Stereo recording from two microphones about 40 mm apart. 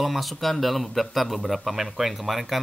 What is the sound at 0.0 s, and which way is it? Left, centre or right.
A man's voice, centre.